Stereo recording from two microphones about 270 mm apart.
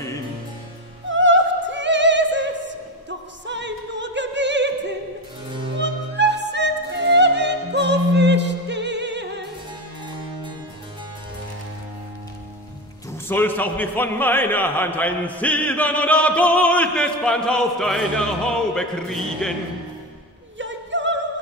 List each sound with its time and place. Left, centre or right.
1.1 s opera: right
5.8 s opera: right
13.3 s a man's voice: centre
20.5 s opera: right